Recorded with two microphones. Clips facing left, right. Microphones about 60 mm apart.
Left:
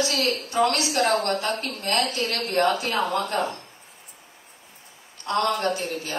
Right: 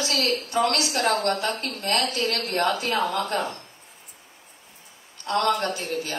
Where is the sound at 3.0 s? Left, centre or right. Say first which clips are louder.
Left 1 dB; left.